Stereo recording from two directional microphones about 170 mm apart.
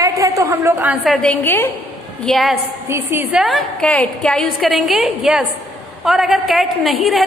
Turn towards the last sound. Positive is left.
turn(degrees=0)  # may be behind; listen again after turning